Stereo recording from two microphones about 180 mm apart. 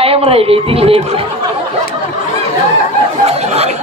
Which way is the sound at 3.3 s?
35° right (ahead or behind).